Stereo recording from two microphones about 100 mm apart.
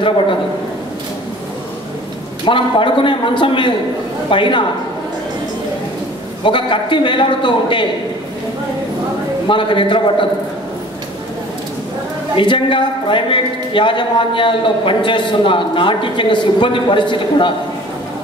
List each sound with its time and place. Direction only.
2.4 s speech: 60° left (ahead or behind)
6.4 s speech: 55° left (ahead or behind)
9.5 s speech: 55° left (ahead or behind)
12.4 s speech: 55° left (ahead or behind)